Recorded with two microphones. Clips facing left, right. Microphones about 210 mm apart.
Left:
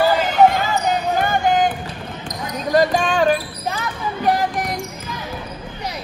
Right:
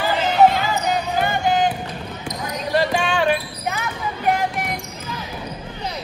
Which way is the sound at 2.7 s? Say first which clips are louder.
Left 4 dB; 45° left (ahead or behind).